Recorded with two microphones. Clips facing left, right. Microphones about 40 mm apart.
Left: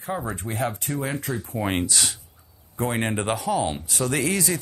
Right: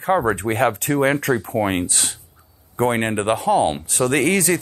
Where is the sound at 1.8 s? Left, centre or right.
Right.